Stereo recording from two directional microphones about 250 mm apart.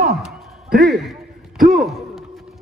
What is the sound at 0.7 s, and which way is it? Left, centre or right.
Speech, right.